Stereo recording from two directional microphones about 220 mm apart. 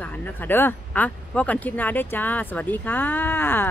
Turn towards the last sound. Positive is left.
turn(degrees=10)  # may be behind; listen again after turning